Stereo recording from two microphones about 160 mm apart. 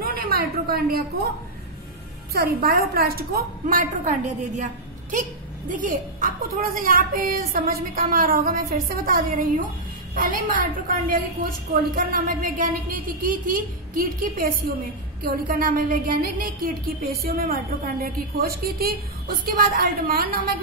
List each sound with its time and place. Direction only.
0.0 s a woman's voice: 65° right (ahead or behind)
2.3 s a woman's voice: 70° right (ahead or behind); by 4.6 s 45° right (ahead or behind)
5.7 s a woman's voice: 55° right (ahead or behind)